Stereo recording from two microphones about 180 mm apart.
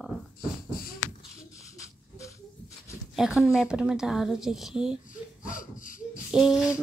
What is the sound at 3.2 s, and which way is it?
Speech, centre (ahead or behind).